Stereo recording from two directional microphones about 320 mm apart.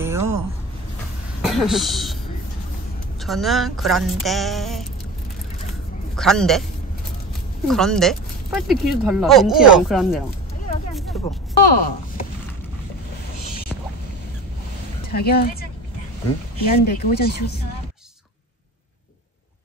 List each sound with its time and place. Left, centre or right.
0.0 s a sound: centre
1.4 s speech: centre
3.2 s speech: centre
6.1 s speech: centre
7.6 s speech: centre
11.2 s speech: left
15.1 s speech: left
16.8 s speech: left